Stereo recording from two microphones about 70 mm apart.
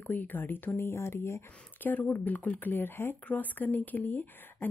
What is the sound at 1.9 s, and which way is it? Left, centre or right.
Speech, left.